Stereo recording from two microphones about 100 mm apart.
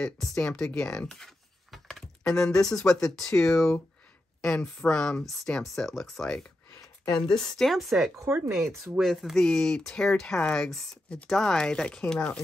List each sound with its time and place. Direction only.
0.0 s speech: 5° left (ahead or behind)
8.2 s speech: 25° right (ahead or behind)
8.9 s speech: centre (ahead or behind)